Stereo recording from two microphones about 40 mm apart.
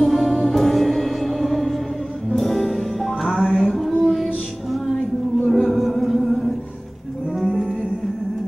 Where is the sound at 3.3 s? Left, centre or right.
Centre.